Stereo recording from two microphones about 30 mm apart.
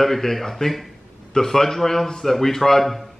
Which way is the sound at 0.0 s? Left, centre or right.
Centre.